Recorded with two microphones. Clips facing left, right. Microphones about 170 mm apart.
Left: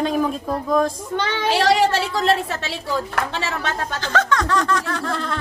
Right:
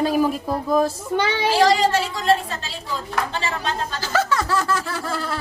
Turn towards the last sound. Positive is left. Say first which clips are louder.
# left 2 dB
turn(degrees=-5)  # may be behind; listen again after turning